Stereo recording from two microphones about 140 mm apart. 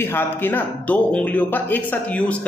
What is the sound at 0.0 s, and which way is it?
Speech, 15° left (ahead or behind).